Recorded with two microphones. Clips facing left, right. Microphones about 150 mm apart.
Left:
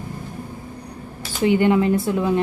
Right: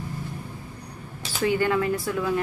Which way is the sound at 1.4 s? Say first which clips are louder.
Left 6 dB; 20° left (ahead or behind).